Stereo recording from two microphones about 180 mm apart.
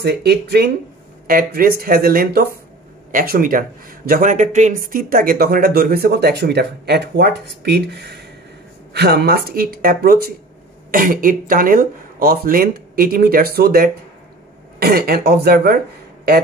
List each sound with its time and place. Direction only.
0.0 s a man's voice: 65° right (ahead or behind)